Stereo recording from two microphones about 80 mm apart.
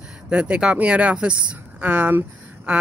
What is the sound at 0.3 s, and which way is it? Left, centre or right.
Speech, centre.